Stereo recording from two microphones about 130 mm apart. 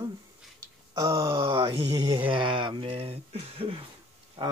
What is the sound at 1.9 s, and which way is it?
Speech, 35° right (ahead or behind).